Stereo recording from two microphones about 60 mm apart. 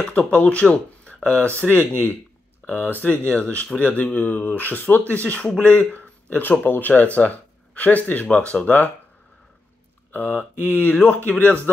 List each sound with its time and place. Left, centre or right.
0.0 s speech: centre
10.1 s speech: left